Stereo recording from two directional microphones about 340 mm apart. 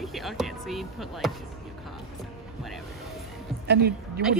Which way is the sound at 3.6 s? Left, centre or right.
Right.